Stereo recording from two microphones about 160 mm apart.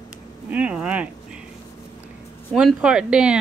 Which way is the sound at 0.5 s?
10° right (ahead or behind).